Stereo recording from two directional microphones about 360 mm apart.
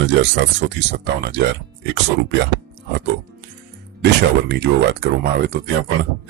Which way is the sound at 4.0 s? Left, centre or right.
Right.